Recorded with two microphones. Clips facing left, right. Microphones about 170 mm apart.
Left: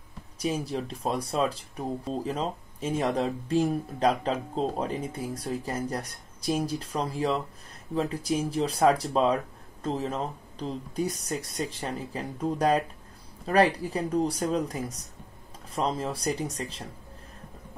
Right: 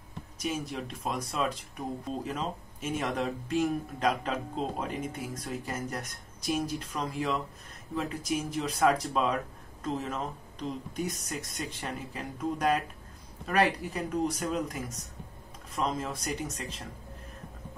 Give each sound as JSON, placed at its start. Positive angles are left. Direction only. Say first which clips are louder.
{"t": 0.4, "sound": "speech", "louder": "left 4 dB", "side_deg": 35}